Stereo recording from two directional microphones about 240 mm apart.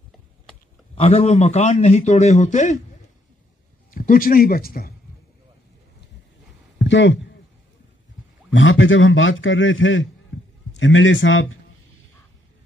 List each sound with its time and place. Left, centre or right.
0.9 s a man's voice: left
3.9 s speech: left
6.8 s a man's voice: left
8.5 s a man's voice: left